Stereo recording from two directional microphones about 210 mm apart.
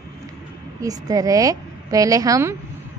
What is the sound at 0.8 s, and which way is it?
Speech, 15° right (ahead or behind).